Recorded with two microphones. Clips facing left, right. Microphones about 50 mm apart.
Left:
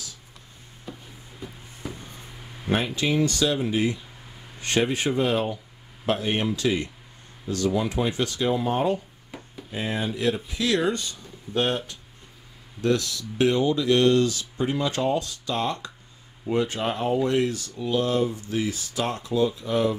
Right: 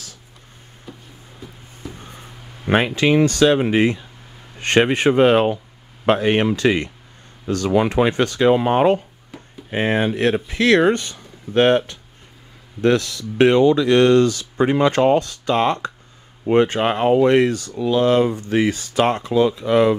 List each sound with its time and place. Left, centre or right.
0.9 s music: centre
1.8 s a sound: centre
2.7 s speech: right
9.7 s speech: right